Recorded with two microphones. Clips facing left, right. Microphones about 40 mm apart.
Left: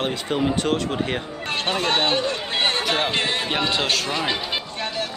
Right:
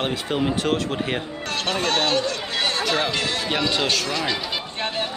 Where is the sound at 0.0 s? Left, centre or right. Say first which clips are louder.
Even; centre.